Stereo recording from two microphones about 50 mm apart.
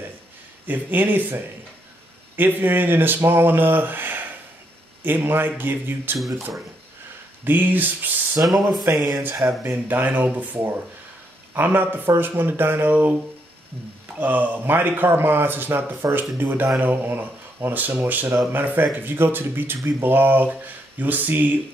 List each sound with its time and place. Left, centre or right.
0.7 s speech: right
6.1 s speech: centre
7.4 s speech: right
8.4 s speech: right
14.1 s speech: right